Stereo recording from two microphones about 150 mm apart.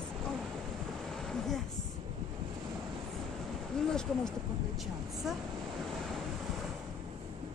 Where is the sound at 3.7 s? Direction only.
5° left (ahead or behind).